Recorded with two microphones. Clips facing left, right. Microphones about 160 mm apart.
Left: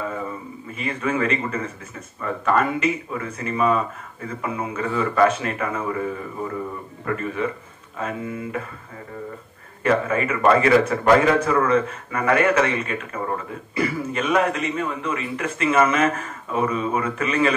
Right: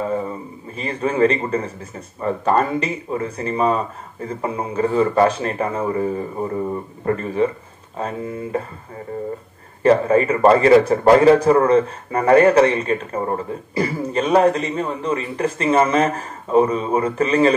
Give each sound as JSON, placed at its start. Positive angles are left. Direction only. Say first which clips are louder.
{"t": 0.7, "sound": "speech", "louder": "right 5 dB", "side_deg": -35}
{"t": 9.8, "sound": "speech", "louder": "right 6 dB", "side_deg": -35}